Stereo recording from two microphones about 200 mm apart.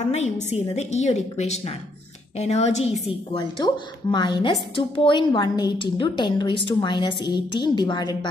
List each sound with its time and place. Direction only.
0.1 s a woman's voice: 35° left (ahead or behind)